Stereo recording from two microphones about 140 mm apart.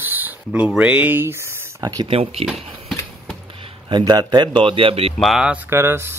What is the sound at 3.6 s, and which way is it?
Speech, 35° right (ahead or behind).